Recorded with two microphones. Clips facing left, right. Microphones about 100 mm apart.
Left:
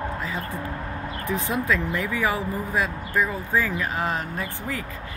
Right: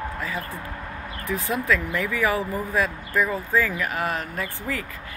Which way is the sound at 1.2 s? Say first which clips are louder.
Right 1 dB; 20° left (ahead or behind).